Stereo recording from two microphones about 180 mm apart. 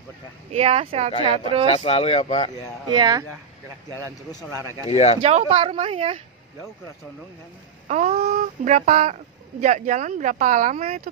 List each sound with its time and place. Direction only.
0.5 s speech: 35° right (ahead or behind)
1.8 s speech: 35° left (ahead or behind)
2.9 s speech: 20° right (ahead or behind)
4.8 s speech: 35° left (ahead or behind)
5.2 s speech: 35° right (ahead or behind)
7.9 s speech: 40° right (ahead or behind)